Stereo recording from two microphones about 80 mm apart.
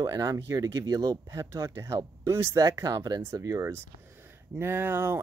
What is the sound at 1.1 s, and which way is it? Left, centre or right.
Speech, right.